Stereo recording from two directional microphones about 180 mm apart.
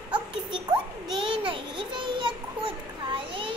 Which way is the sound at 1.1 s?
30° right (ahead or behind).